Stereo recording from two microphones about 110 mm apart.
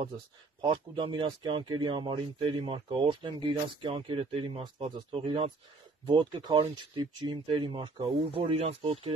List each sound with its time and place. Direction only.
0.6 s speech: 45° right (ahead or behind); by 9.0 s 65° right (ahead or behind)